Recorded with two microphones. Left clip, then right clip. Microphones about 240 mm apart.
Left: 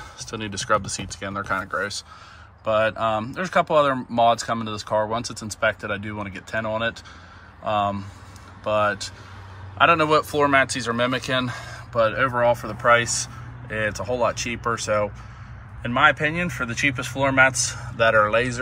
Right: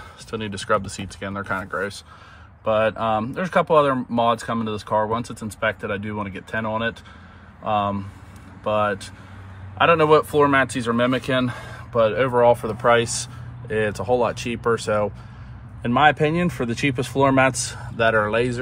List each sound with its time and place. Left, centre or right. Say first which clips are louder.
0.2 s speech: right 1 dB; centre
18.1 s speech: left 1 dB; centre